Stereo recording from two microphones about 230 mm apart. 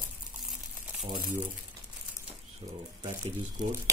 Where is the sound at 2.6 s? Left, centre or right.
Right.